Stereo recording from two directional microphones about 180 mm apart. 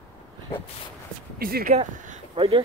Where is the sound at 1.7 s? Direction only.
35° right (ahead or behind).